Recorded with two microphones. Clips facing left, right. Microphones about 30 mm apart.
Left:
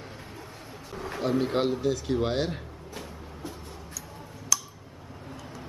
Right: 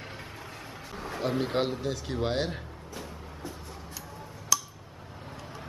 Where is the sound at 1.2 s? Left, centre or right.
Centre.